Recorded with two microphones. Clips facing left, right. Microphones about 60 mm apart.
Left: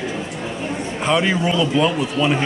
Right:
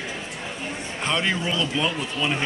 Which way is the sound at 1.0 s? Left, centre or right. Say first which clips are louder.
Left 6 dB; centre.